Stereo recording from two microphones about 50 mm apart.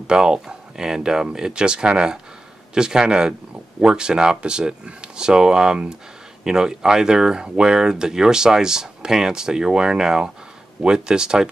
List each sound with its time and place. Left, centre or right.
0.0 s speech: centre